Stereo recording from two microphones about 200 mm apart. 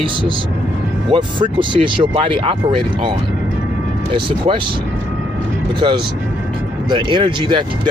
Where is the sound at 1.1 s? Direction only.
25° right (ahead or behind).